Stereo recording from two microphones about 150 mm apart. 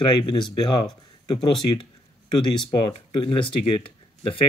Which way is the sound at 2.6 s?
35° left (ahead or behind).